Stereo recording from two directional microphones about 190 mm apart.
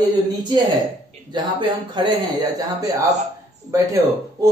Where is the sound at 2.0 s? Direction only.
25° right (ahead or behind).